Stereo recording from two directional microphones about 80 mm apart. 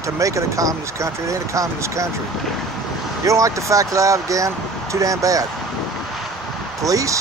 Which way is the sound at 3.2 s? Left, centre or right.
Right.